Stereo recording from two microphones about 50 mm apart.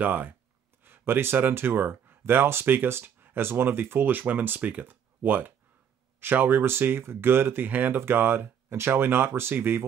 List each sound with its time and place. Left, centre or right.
0.0 s speech: right